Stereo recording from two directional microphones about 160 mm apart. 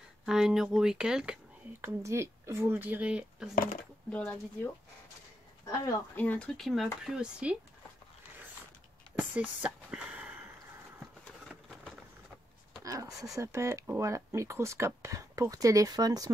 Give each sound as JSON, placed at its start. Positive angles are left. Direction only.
{"t": 0.2, "sound": "speech", "side_deg": -5}
{"t": 4.1, "sound": "speech", "side_deg": 10}
{"t": 5.7, "sound": "speech", "side_deg": 15}
{"t": 9.3, "sound": "a sound", "side_deg": -10}
{"t": 12.8, "sound": "speech", "side_deg": -20}